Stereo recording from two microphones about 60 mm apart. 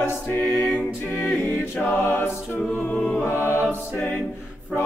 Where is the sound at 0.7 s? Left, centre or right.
Left.